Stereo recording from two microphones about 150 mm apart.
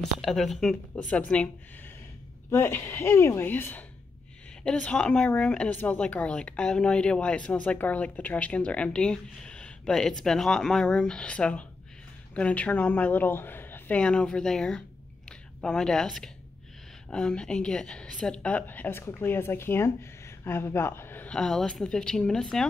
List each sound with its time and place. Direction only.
0.2 s speech: centre (ahead or behind)
2.5 s speech: 15° left (ahead or behind)
15.2 s a sound: 5° left (ahead or behind)
17.1 s speech: 5° left (ahead or behind)